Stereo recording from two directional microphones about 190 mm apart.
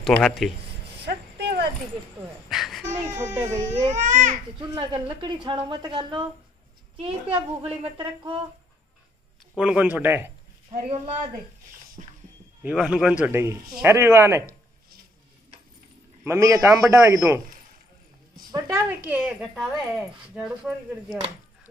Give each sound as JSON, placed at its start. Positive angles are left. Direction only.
{"t": 0.4, "sound": "speech", "side_deg": 0}
{"t": 0.9, "sound": "a sound", "side_deg": -60}
{"t": 2.5, "sound": "babbling", "side_deg": 0}
{"t": 2.9, "sound": "a man's voice", "side_deg": -10}
{"t": 3.9, "sound": "speech", "side_deg": -40}
{"t": 4.6, "sound": "a woman's voice", "side_deg": -25}
{"t": 7.3, "sound": "a woman's voice", "side_deg": -30}
{"t": 9.6, "sound": "a man's voice", "side_deg": -5}
{"t": 10.7, "sound": "speech", "side_deg": -35}
{"t": 12.0, "sound": "a sound", "side_deg": -35}
{"t": 12.6, "sound": "a man's voice", "side_deg": -5}
{"t": 16.3, "sound": "a man's voice", "side_deg": -15}
{"t": 18.5, "sound": "speech", "side_deg": -10}